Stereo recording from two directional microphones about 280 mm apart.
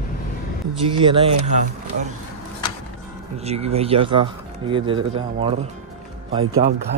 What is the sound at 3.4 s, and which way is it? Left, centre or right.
A man's voice, right.